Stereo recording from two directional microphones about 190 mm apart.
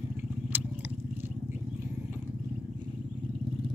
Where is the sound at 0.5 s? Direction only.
10° right (ahead or behind).